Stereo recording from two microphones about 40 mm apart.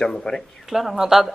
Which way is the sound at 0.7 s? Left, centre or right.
Centre.